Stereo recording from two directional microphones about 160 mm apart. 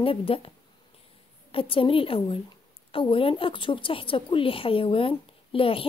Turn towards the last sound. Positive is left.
turn(degrees=35)  # may be behind; listen again after turning